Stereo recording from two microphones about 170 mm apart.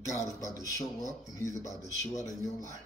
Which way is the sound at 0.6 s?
20° left (ahead or behind).